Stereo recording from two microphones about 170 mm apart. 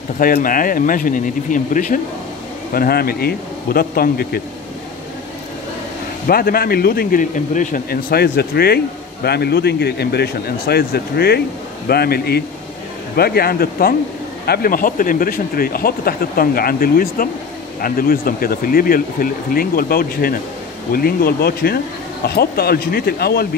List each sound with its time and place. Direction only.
0.2 s speech: 55° left (ahead or behind)
2.7 s speech: 60° left (ahead or behind)
6.2 s a man's voice: 60° left (ahead or behind)